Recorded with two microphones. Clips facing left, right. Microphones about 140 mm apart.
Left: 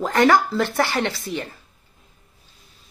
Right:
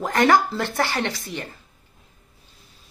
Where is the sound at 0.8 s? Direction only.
20° left (ahead or behind).